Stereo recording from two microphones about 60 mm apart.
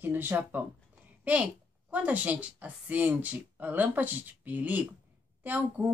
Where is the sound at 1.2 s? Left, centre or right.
Right.